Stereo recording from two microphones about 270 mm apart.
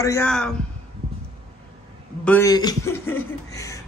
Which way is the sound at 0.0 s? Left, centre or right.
Centre.